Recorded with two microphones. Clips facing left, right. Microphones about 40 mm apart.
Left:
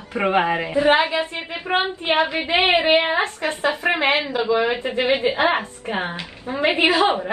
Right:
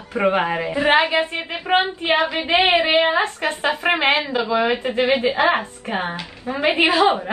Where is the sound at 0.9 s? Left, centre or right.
Right.